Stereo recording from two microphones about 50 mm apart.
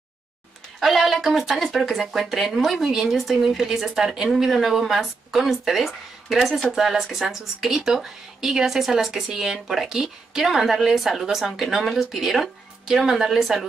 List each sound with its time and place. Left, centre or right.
0.7 s a woman's voice: centre